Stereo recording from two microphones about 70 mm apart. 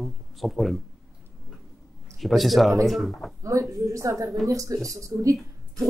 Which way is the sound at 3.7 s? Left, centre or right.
Right.